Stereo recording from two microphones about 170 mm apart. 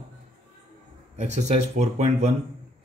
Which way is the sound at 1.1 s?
45° right (ahead or behind).